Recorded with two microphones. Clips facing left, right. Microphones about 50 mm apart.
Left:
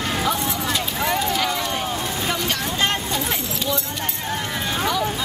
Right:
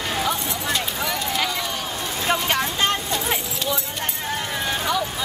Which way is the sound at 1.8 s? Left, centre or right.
Centre.